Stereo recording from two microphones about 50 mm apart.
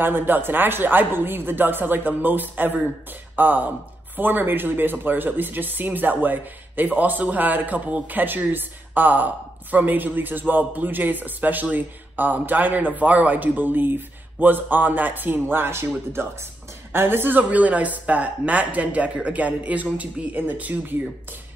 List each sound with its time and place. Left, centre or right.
0.0 s a woman's voice: right